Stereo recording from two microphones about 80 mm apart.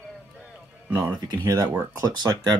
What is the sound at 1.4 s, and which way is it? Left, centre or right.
Speech, right.